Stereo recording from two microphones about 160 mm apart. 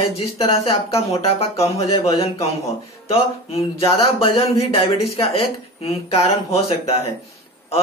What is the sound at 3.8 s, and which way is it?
Speech, 35° left (ahead or behind).